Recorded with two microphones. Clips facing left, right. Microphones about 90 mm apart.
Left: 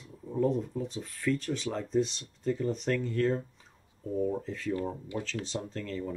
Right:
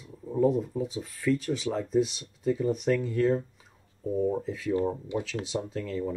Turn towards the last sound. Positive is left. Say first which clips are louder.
# right 4 dB
turn(degrees=-10)  # may be behind; listen again after turning